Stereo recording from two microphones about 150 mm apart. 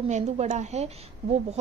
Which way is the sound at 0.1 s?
50° right (ahead or behind).